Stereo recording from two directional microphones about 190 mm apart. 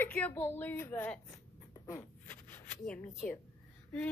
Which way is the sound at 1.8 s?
10° left (ahead or behind).